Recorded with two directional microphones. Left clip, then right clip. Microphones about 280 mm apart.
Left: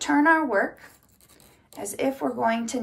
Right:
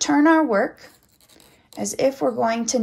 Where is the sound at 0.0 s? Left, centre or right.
Right.